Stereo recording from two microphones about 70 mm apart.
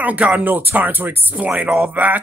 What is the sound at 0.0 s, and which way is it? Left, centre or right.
Speech, right.